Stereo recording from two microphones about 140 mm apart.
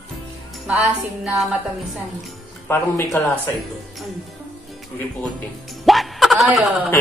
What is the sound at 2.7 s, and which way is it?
Speech, 15° left (ahead or behind).